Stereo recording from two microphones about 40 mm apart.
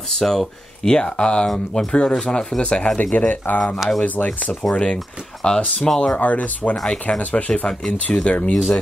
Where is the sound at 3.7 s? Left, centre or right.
Centre.